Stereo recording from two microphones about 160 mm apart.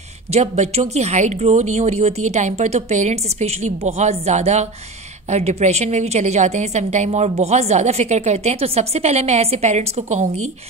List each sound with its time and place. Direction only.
0.3 s a woman's voice: 40° right (ahead or behind)